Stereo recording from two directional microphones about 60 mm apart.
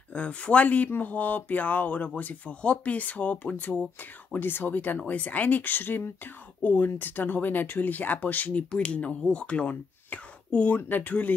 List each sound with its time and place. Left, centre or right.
0.1 s speech: left
10.8 s speech: left